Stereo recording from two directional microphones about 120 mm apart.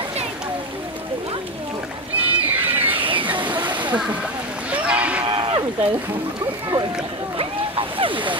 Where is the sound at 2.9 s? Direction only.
45° right (ahead or behind).